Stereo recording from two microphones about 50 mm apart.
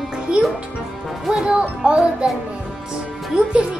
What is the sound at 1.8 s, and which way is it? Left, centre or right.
Music, centre.